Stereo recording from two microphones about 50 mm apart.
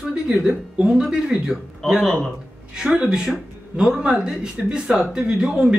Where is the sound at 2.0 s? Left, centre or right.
Centre.